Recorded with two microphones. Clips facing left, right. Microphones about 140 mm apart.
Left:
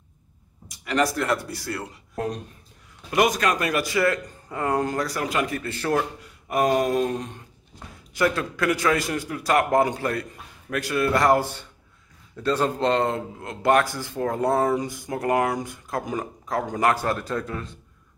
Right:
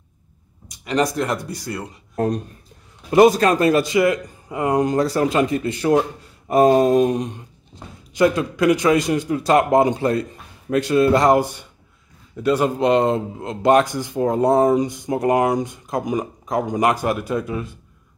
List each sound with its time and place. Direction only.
0.7 s speech: 20° right (ahead or behind)
2.1 s speech: 45° right (ahead or behind)
3.1 s speech: 30° right (ahead or behind)
6.4 s speech: 30° right (ahead or behind); by 17.7 s 10° right (ahead or behind)